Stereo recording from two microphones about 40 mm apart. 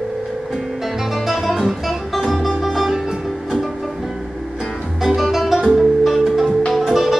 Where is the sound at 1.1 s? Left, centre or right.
Centre.